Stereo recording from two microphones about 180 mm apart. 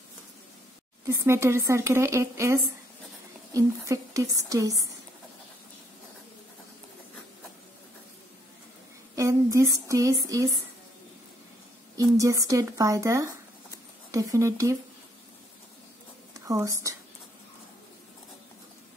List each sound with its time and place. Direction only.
1.0 s speech: 15° right (ahead or behind)
9.1 s speech: 15° right (ahead or behind)
12.0 s speech: 15° right (ahead or behind)
16.4 s speech: 20° right (ahead or behind)